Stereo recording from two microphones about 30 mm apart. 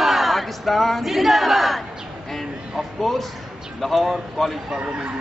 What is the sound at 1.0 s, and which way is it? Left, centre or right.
Battle cry, centre.